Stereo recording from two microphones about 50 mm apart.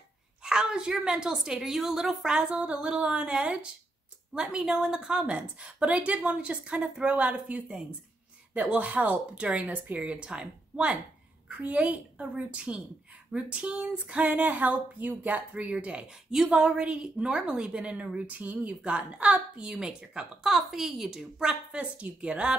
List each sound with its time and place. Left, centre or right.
0.4 s a woman's voice: centre
21.5 s a woman's voice: right